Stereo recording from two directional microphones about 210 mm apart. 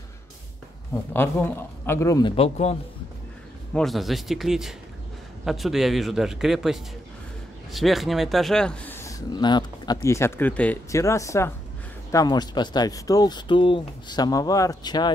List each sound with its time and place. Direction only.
1.1 s speech: 10° left (ahead or behind); by 2.8 s 30° left (ahead or behind)
3.7 s a man's voice: centre (ahead or behind); by 15.1 s 20° left (ahead or behind)